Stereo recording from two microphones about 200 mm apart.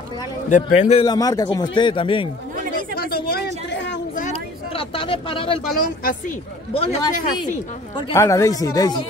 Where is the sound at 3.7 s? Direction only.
65° left (ahead or behind).